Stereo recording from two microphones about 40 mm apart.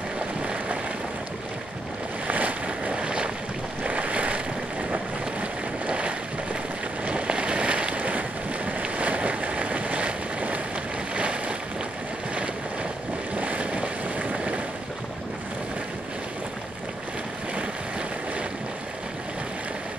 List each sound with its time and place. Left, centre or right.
2.2 s boat: right
7.1 s a sound: right
11.1 s boat: right
13.3 s boat: right